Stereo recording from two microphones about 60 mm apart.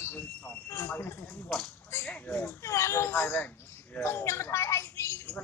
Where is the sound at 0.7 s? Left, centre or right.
Left.